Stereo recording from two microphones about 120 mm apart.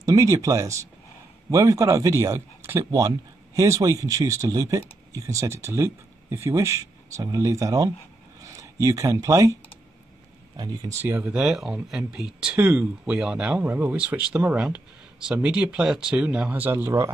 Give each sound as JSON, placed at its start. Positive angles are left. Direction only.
{"t": 0.0, "sound": "speech", "side_deg": -30}
{"t": 10.6, "sound": "speech", "side_deg": -35}
{"t": 11.0, "sound": "speech", "side_deg": -20}